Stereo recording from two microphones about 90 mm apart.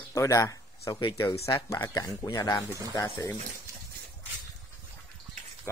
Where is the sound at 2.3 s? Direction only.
45° left (ahead or behind).